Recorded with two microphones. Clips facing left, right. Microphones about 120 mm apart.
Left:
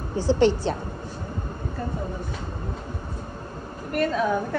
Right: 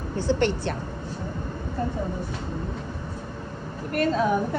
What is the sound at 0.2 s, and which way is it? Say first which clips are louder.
Speech: left 4 dB; 55° right (ahead or behind).